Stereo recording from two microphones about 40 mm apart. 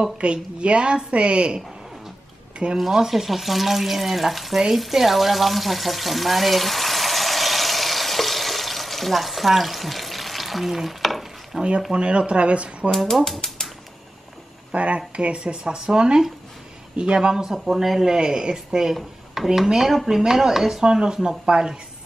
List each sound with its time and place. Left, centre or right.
0.2 s speech: right
2.8 s speech: centre
11.9 s speech: right
12.9 s speech: centre
14.7 s speech: right
17.5 s speech: centre